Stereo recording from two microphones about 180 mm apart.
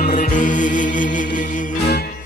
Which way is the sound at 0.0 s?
45° left (ahead or behind).